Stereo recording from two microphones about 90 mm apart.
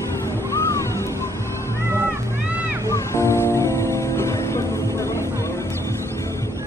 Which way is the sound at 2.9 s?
30° left (ahead or behind).